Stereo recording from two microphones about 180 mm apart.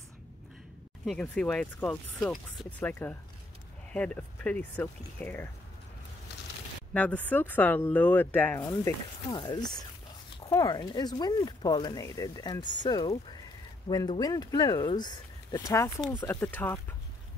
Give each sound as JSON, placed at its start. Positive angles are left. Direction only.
{"t": 1.0, "sound": "speech", "side_deg": 5}
{"t": 6.9, "sound": "speech", "side_deg": 10}
{"t": 8.5, "sound": "speech", "side_deg": 25}